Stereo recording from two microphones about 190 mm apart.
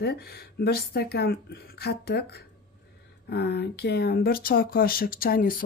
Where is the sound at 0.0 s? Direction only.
55° left (ahead or behind).